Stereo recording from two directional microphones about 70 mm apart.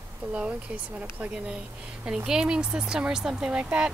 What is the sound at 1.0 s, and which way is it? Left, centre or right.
Speech, centre.